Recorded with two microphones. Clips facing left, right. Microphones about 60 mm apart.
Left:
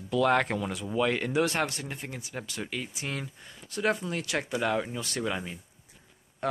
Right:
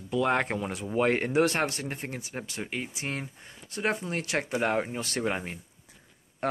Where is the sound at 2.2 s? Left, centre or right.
Right.